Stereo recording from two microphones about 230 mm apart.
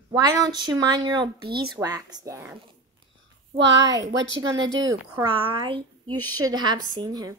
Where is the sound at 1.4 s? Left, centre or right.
Right.